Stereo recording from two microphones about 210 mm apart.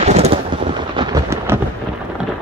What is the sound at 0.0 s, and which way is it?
Thunder, 30° right (ahead or behind).